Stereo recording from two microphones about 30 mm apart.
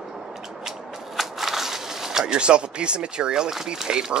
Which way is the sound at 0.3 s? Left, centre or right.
Centre.